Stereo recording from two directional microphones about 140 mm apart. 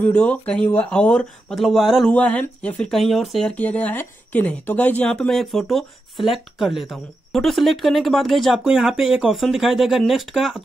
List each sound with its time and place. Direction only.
0.0 s speech: 10° left (ahead or behind)